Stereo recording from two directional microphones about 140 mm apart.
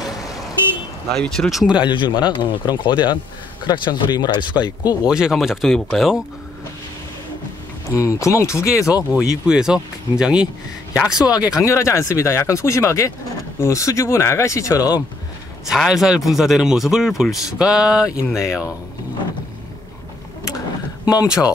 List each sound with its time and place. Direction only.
1.1 s speech: 5° left (ahead or behind)
1.9 s speech: 35° left (ahead or behind)
5.0 s speech: 5° right (ahead or behind)
8.0 s speech: 20° left (ahead or behind)
8.9 s speech: 5° right (ahead or behind)
11.2 s speech: 25° left (ahead or behind)
15.6 s speech: 5° right (ahead or behind)
21.0 s a sound: 30° left (ahead or behind)